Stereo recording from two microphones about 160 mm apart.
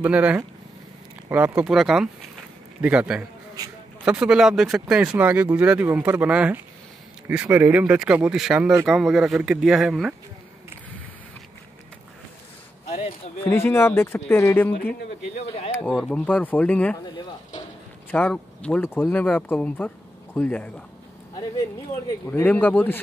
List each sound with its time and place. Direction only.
0.0 s speech: 10° right (ahead or behind)
12.8 s a sound: 40° left (ahead or behind)
13.4 s speech: 15° left (ahead or behind)
16.1 s speech: 10° left (ahead or behind)
18.1 s speech: 10° left (ahead or behind)
22.3 s speech: 10° left (ahead or behind)